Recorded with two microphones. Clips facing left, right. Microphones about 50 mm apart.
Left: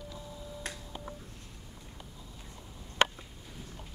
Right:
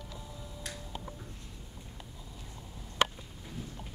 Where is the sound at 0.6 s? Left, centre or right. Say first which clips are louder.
Left 2 dB; left.